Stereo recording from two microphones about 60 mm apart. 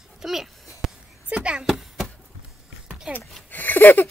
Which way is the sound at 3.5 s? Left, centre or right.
Left.